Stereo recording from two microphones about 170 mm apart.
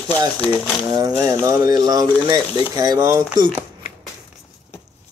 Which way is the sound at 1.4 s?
20° right (ahead or behind).